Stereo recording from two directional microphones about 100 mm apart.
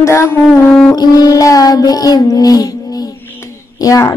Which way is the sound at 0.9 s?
40° left (ahead or behind).